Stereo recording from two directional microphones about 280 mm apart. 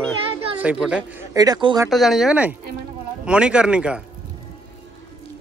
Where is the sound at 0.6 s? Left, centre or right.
Centre.